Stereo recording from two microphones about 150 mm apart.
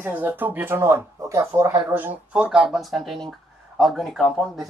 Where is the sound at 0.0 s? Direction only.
10° right (ahead or behind).